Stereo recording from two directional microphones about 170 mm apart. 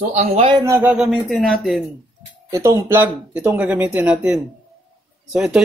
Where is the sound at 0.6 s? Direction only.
20° right (ahead or behind).